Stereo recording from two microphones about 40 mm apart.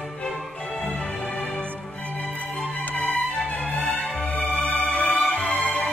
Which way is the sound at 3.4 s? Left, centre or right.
Left.